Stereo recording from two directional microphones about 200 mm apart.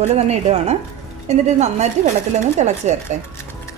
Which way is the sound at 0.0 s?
35° right (ahead or behind).